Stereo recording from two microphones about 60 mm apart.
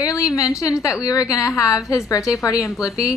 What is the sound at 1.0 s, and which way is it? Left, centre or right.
A woman's voice, left.